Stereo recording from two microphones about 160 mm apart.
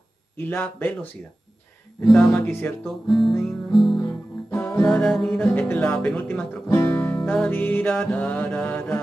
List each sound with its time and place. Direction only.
0.4 s speech: 15° left (ahead or behind)
2.0 s music: 5° left (ahead or behind)
2.3 s speech: 10° left (ahead or behind)
2.8 s guitar: centre (ahead or behind)
4.0 s guitar: 15° left (ahead or behind)
4.8 s speech: centre (ahead or behind)